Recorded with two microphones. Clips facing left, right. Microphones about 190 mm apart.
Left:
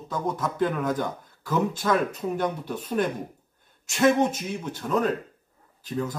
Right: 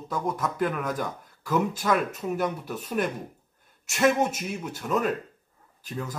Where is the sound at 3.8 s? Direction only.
5° right (ahead or behind).